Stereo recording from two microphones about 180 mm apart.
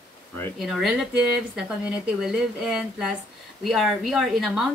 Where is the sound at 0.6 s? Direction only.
Centre (ahead or behind).